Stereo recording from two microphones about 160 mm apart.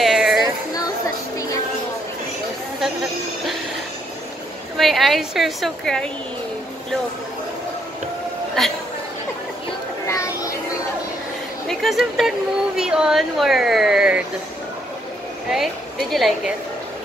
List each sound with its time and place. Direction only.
0.0 s a sound: centre (ahead or behind)
2.8 s chatter: centre (ahead or behind)
4.7 s speech: centre (ahead or behind)
10.0 s chatter: 20° left (ahead or behind)
11.6 s speech: centre (ahead or behind)
15.5 s speech: centre (ahead or behind)